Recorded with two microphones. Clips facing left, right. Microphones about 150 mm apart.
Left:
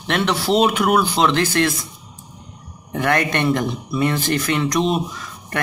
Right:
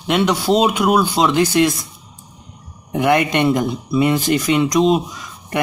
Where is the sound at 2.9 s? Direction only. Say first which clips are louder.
Right 4 dB; 15° right (ahead or behind).